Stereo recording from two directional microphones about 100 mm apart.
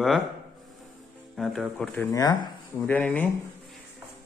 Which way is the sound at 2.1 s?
40° left (ahead or behind).